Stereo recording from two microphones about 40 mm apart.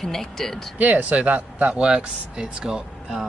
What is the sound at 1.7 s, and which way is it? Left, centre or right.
Speech, right.